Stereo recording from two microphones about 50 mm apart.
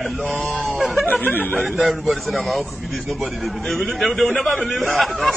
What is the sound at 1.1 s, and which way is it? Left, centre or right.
Speech, left.